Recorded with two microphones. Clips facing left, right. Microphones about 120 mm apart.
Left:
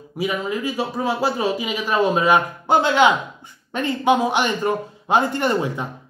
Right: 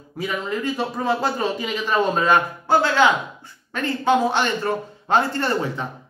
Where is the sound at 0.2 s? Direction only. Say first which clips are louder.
Left 2 dB; 10° left (ahead or behind).